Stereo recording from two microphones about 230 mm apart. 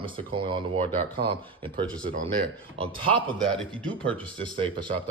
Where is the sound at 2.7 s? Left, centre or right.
Right.